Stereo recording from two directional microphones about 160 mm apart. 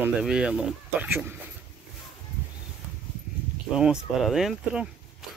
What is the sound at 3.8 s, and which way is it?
Speech, 5° right (ahead or behind).